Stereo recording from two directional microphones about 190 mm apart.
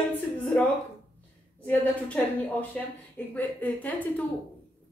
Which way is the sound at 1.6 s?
10° left (ahead or behind).